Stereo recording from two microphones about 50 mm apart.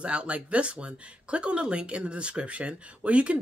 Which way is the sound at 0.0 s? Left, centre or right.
Right.